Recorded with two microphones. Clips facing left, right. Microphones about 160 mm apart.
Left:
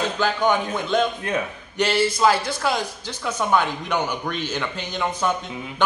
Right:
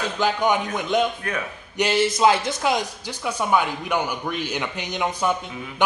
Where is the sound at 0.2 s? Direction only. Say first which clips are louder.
Right 1 dB; 15° right (ahead or behind).